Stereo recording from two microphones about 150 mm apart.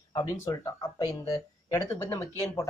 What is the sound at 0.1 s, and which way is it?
Speech, 30° left (ahead or behind).